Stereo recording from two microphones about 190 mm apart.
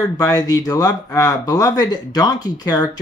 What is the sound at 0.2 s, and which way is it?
Speech, 20° left (ahead or behind).